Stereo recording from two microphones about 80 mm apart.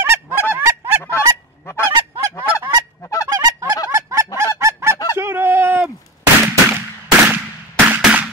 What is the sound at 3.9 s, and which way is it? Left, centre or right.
Honk, right.